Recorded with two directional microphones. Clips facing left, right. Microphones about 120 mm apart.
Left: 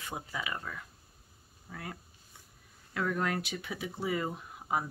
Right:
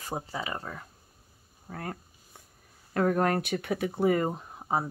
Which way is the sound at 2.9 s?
50° right (ahead or behind).